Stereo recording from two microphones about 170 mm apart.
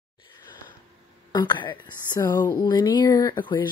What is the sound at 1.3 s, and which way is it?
Speech, 25° left (ahead or behind).